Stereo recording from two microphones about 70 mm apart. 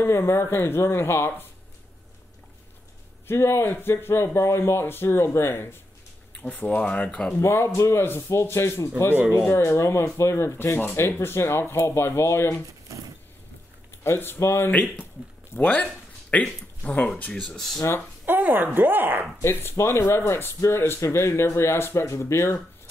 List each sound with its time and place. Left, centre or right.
0.0 s speech: left
3.3 s speech: left; by 7.3 s centre
7.3 s speech: left
12.9 s vehicle: right
14.0 s speech: left
14.7 s speech: left
15.5 s a sound: left
16.8 s speech: left
17.3 s speech: centre
18.2 s speech: right
19.4 s speech: left